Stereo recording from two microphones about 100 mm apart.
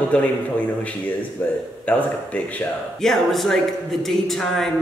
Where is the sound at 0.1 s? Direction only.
15° left (ahead or behind).